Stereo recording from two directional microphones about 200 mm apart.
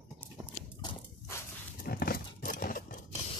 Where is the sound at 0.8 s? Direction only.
15° left (ahead or behind).